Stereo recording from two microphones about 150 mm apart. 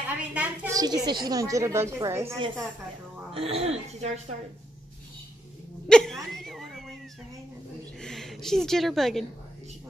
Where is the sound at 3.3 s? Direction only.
40° right (ahead or behind).